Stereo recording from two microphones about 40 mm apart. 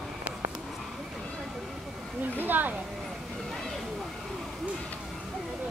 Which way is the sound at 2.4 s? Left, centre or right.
Right.